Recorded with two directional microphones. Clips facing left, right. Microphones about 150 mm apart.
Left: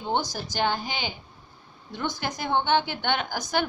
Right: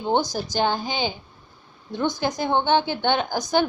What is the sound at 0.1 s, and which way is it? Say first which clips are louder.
Speech: right 5 dB; 15° right (ahead or behind).